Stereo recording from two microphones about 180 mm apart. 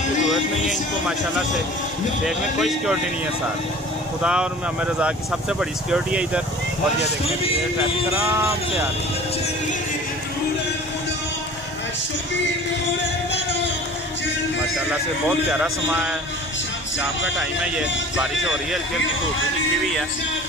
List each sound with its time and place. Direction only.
2.2 s speech: centre (ahead or behind)
4.2 s speech: 5° right (ahead or behind)
7.0 s speech: 30° left (ahead or behind)
8.2 s speech: 15° right (ahead or behind)
15.5 s speech: 5° right (ahead or behind)
17.4 s speech: 5° right (ahead or behind)